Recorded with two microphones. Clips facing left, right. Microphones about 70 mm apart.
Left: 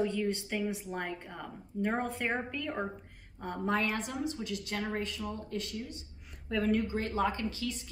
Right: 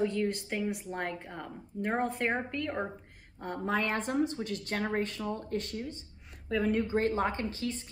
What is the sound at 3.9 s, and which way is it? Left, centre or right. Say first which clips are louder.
A woman's voice: right 4 dB; right.